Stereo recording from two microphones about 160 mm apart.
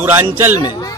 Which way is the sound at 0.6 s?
25° left (ahead or behind).